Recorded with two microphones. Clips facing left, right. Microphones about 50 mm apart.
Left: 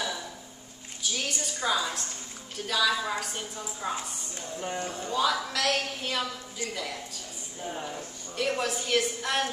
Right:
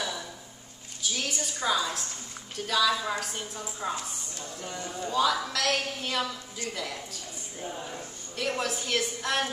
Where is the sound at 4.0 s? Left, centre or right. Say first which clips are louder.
Even; left.